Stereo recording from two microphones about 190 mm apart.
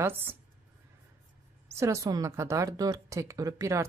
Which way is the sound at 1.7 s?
15° right (ahead or behind).